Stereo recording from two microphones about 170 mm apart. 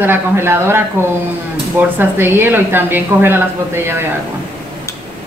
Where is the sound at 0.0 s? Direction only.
15° right (ahead or behind).